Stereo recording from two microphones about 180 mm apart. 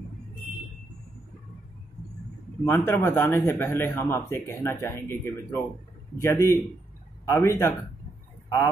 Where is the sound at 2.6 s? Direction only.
15° left (ahead or behind).